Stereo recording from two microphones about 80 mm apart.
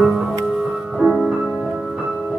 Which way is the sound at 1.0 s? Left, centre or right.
Centre.